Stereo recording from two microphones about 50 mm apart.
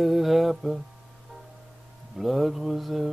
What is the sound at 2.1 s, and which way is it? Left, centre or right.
Mantra, centre.